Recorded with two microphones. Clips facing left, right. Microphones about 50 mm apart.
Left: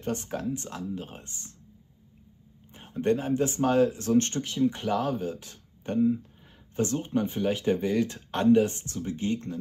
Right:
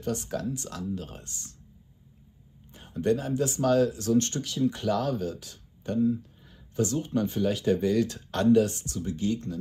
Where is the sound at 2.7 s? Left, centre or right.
Left.